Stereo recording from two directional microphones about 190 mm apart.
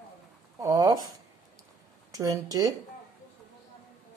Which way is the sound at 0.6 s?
20° right (ahead or behind).